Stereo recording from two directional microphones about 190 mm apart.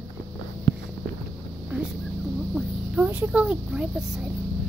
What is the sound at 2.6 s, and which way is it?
A woman's voice, 10° right (ahead or behind).